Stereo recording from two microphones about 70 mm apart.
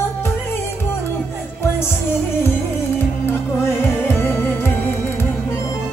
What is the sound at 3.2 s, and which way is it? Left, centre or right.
Music, left.